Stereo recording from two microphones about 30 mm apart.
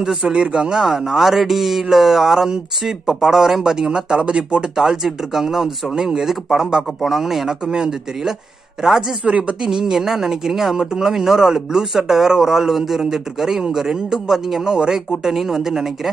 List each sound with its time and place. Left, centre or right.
0.3 s speech: right
0.7 s speech: centre; by 4.6 s right
4.8 s speech: centre
7.6 s speech: right
9.2 s speech: right
9.6 s speech: right
15.3 s speech: centre